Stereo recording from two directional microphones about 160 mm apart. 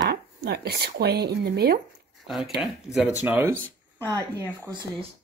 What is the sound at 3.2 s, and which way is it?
Speech, 10° right (ahead or behind).